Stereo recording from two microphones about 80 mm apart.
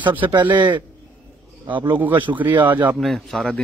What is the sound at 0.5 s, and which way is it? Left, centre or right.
Speech, right.